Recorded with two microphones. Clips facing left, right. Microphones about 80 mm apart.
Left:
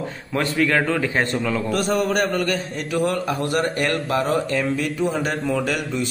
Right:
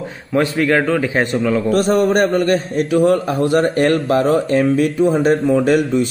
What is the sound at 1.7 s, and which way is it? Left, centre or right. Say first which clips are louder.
Speech: right 7 dB; right.